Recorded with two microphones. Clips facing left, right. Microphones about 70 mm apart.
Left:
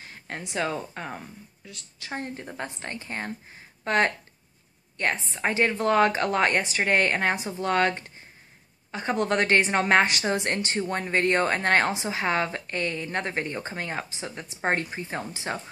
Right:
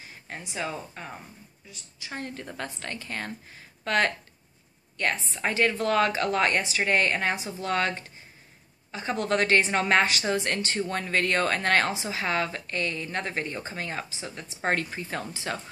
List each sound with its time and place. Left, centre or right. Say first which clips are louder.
0.0 s speech: left 3 dB; left
1.7 s a woman's voice: left 2 dB; left
2.0 s a woman's voice: left 2 dB; left
14.6 s speech: left 1 dB; left